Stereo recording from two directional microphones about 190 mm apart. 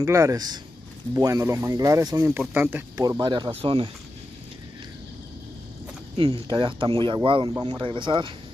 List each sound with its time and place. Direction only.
0.0 s speech: 15° right (ahead or behind)
6.1 s speech: 25° right (ahead or behind)